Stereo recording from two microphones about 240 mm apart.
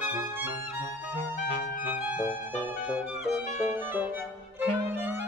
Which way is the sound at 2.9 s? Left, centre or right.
Centre.